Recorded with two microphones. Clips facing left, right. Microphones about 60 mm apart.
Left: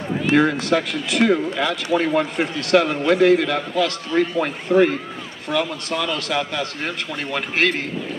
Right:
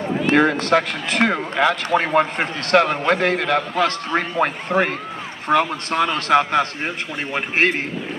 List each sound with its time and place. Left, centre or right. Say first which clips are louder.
0.3 s speech: right 1 dB; right
7.3 s a man's voice: right 2 dB; right